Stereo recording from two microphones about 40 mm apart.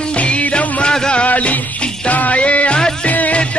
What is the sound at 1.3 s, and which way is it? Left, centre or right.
Music, left.